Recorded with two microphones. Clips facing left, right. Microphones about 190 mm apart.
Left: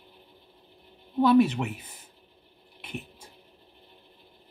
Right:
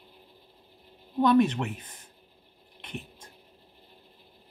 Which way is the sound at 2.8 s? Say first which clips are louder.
Left 1 dB; 5° left (ahead or behind).